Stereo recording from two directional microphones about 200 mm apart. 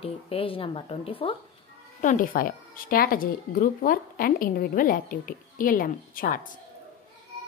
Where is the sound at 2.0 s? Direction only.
40° left (ahead or behind).